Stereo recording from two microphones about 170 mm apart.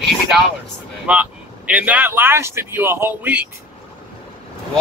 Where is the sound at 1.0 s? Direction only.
10° right (ahead or behind).